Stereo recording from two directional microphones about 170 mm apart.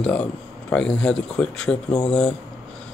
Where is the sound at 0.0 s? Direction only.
5° left (ahead or behind).